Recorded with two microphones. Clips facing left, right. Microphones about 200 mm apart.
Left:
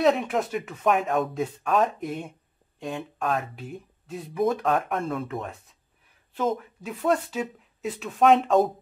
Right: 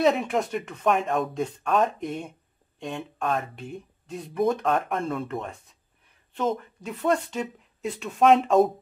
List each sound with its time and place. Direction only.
0.0 s speech: centre (ahead or behind)